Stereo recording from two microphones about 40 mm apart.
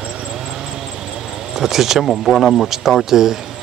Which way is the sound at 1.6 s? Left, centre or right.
Centre.